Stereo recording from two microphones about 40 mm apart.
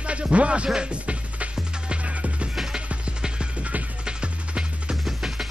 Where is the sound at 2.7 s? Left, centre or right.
Right.